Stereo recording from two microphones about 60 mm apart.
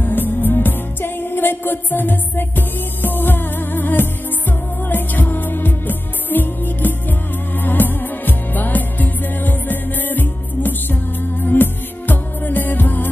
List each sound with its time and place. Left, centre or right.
0.0 s music: left